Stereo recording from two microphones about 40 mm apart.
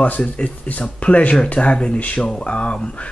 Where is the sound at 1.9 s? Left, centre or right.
Left.